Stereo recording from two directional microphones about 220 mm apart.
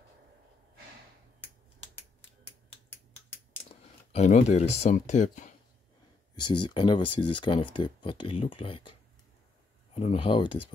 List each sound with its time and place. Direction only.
3.6 s speech: 30° left (ahead or behind)
6.4 s speech: 20° left (ahead or behind)
9.9 s speech: 25° left (ahead or behind)